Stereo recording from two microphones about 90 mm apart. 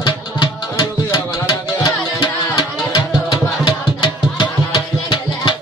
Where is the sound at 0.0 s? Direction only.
55° left (ahead or behind).